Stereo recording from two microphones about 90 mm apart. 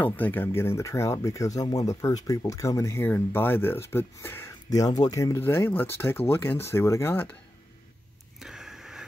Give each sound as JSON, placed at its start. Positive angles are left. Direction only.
{"t": 0.0, "sound": "speech", "side_deg": 20}
{"t": 4.6, "sound": "speech", "side_deg": 45}
{"t": 5.4, "sound": "speech", "side_deg": 25}
{"t": 8.4, "sound": "wheeze", "side_deg": -5}